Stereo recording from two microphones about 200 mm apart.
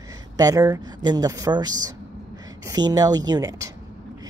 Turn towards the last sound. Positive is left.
turn(degrees=-15)  # may be behind; listen again after turning